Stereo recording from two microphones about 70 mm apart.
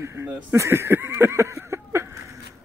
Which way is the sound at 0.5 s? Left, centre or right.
Right.